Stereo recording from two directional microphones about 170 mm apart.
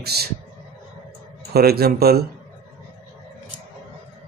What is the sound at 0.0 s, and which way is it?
Speech, 70° right (ahead or behind).